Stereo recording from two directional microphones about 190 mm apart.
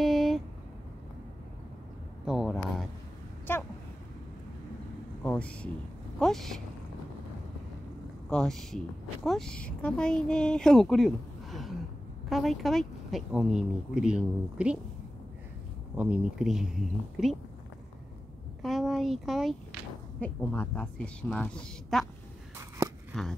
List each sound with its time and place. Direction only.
0.0 s a sound: centre (ahead or behind)
2.2 s speech: centre (ahead or behind)
3.5 s a sound: 10° left (ahead or behind)
5.2 s a sound: 5° left (ahead or behind)
6.1 s a woman's voice: centre (ahead or behind)
8.3 s a woman's voice: centre (ahead or behind)
16.0 s a woman's voice: 5° right (ahead or behind)
18.6 s a woman's voice: centre (ahead or behind)
23.1 s a woman's voice: centre (ahead or behind)